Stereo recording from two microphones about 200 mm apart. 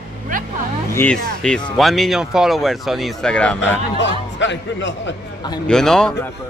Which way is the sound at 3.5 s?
60° left (ahead or behind).